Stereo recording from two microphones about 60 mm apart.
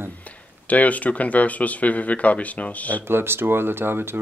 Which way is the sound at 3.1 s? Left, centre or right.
Right.